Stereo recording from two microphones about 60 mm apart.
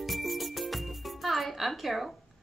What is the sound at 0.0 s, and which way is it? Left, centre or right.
Music, centre.